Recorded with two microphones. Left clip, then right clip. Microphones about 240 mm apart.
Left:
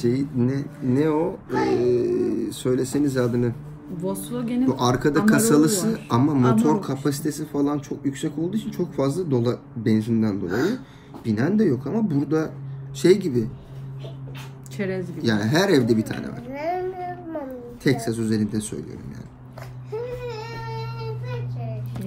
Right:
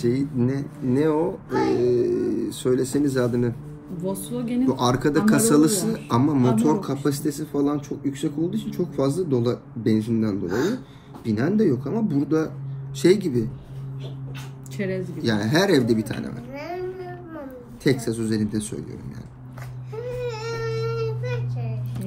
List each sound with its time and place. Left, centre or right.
0.0 s a man's voice: centre
4.4 s speech: centre
4.6 s a man's voice: centre
14.8 s speech: centre
15.2 s a man's voice: centre
17.8 s speech: centre
20.9 s child singing: left